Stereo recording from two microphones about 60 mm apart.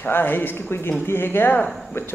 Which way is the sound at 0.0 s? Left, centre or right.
Left.